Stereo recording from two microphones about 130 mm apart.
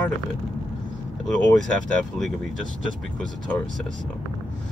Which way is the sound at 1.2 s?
5° left (ahead or behind).